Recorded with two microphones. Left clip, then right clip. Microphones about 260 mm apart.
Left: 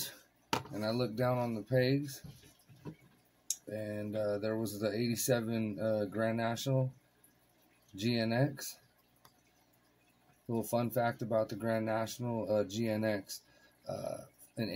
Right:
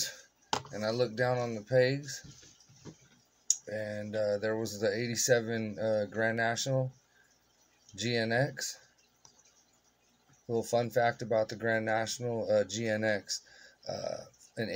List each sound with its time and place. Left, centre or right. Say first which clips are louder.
0.7 s speech: right 7 dB; right
3.7 s speech: right 3 dB; right
8.0 s speech: right 3 dB; right
10.5 s speech: right 5 dB; right